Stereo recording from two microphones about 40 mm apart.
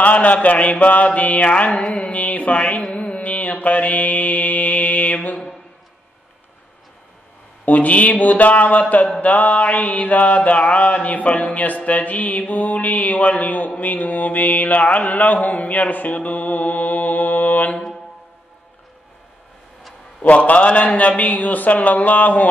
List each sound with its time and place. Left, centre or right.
0.0 s mantra: left
1.5 s mantra: left
7.6 s mantra: left
20.2 s mantra: left